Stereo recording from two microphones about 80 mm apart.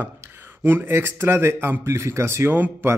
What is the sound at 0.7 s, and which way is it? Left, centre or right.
Speech, right.